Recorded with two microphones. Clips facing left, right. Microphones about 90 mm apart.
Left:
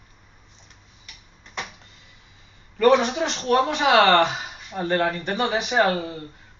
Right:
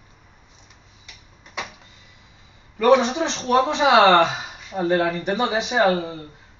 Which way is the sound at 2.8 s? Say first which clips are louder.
Right 1 dB; 20° right (ahead or behind).